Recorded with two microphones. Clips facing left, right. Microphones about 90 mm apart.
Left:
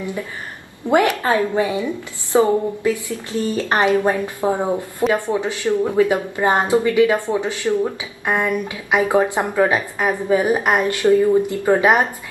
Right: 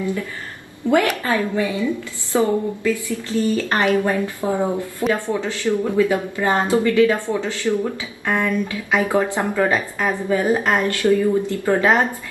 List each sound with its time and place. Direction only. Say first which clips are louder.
0.8 s a woman's voice: left 2 dB; 20° left (ahead or behind)